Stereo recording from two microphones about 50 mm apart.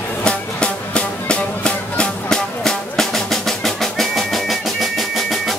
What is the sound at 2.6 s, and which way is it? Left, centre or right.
Music, centre.